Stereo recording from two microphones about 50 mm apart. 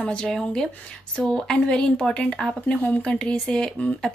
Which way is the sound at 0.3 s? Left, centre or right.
Centre.